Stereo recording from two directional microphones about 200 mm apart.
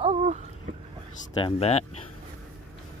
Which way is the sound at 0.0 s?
35° right (ahead or behind).